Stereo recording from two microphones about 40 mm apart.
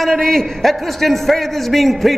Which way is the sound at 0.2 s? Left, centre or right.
Centre.